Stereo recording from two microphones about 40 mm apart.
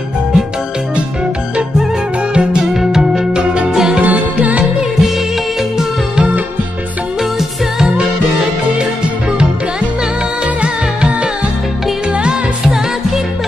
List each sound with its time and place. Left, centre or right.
2.3 s music: right
2.7 s music: centre
4.0 s music: right
7.3 s music: centre
10.6 s music: right
12.2 s music: right